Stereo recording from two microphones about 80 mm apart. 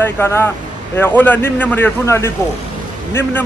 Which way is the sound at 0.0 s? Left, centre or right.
Left.